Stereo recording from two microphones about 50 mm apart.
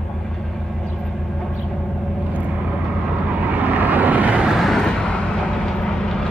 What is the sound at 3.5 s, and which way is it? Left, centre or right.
Vehicle, right.